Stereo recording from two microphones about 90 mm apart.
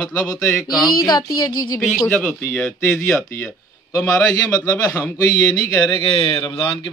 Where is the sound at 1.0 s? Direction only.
50° left (ahead or behind).